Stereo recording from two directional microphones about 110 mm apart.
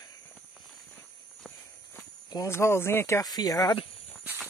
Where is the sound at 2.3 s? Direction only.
30° left (ahead or behind).